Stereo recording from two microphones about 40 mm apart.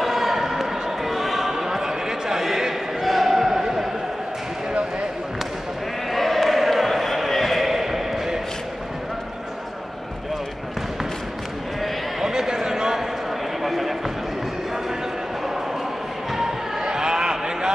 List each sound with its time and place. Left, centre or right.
0.0 s basketball bounce: centre
1.5 s a sound: centre
6.1 s basketball bounce: centre
12.2 s a sound: centre
13.6 s basketball bounce: centre
16.3 s basketball bounce: centre